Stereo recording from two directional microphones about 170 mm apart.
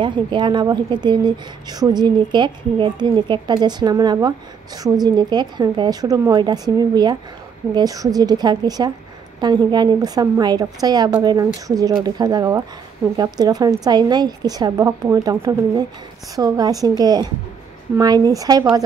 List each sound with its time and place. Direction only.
0.0 s speech: 30° right (ahead or behind)